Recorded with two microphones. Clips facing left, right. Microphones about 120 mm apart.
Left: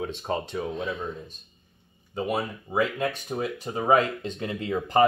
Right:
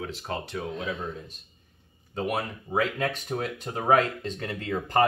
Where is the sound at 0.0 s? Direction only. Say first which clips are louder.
Left 4 dB; 20° left (ahead or behind).